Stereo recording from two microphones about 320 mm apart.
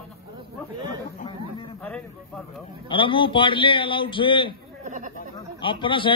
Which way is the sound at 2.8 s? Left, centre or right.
Centre.